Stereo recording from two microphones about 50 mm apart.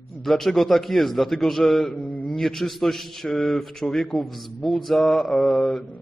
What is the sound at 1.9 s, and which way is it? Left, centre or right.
Mantra, left.